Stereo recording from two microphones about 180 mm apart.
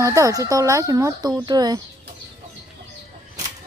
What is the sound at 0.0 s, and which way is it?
Speech, 15° right (ahead or behind).